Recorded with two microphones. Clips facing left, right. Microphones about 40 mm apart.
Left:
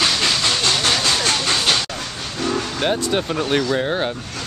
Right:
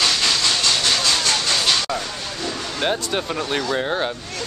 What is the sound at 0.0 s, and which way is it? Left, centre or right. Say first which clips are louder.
Train: left 1 dB; centre.